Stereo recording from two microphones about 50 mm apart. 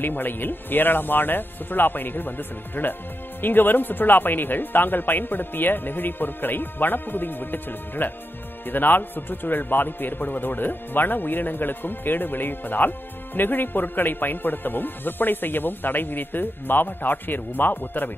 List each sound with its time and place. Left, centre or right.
0.0 s a man's voice: left